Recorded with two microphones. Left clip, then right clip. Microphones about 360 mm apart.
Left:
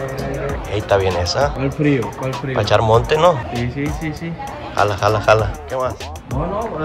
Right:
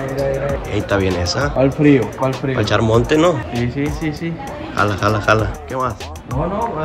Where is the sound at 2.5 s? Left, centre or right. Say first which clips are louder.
Left 4 dB; centre.